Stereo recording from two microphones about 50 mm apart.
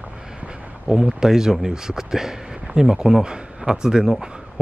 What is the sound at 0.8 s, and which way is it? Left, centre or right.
Speech, centre.